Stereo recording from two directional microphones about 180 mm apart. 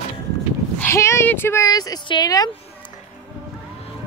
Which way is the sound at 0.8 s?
15° left (ahead or behind).